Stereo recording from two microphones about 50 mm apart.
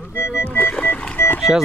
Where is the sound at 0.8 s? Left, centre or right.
Left.